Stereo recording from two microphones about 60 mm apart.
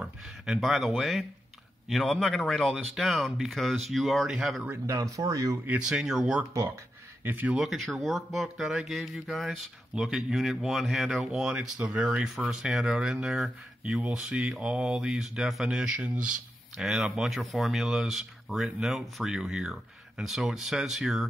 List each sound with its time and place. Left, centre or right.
0.0 s speech: centre
4.8 s speech: right
5.8 s speech: centre
6.5 s speech: right
7.2 s speech: right
7.5 s speech: centre
11.5 s speech: centre
12.1 s speech: centre
16.7 s speech: centre